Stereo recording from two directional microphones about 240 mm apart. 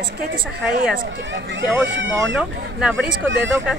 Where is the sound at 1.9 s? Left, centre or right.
Right.